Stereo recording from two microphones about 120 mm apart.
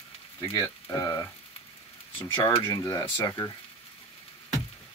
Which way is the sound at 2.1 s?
20° left (ahead or behind).